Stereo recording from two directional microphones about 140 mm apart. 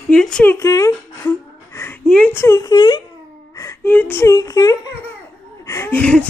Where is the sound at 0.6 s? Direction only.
25° left (ahead or behind).